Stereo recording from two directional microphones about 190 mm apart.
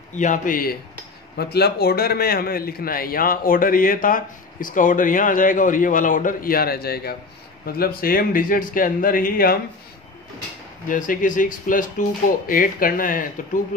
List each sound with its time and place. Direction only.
0.1 s a man's voice: 40° left (ahead or behind)
1.3 s a man's voice: 55° left (ahead or behind)
10.9 s a man's voice: 45° left (ahead or behind)